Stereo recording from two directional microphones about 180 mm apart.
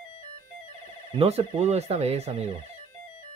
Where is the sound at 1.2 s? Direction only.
35° right (ahead or behind).